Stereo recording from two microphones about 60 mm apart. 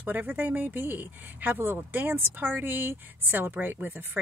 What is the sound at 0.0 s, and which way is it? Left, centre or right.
A woman's voice, right.